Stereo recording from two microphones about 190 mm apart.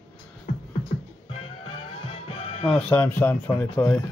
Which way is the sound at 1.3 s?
30° left (ahead or behind).